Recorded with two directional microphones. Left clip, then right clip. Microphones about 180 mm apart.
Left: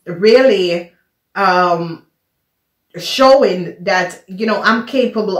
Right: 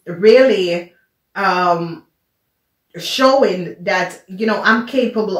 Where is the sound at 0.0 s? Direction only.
35° left (ahead or behind).